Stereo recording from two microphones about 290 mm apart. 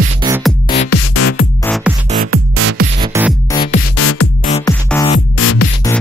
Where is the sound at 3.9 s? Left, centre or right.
Left.